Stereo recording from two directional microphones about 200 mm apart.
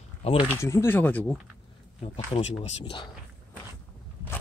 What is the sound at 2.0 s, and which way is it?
Speech, 30° left (ahead or behind).